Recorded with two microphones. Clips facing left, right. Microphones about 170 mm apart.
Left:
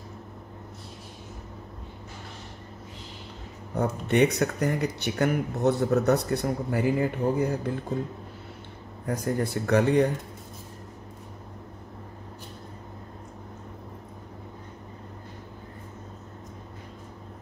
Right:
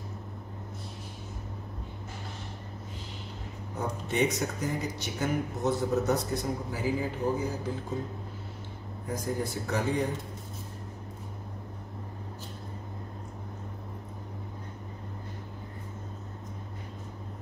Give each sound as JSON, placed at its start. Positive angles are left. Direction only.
{"t": 3.7, "sound": "speech", "side_deg": 65}
{"t": 9.0, "sound": "speech", "side_deg": 65}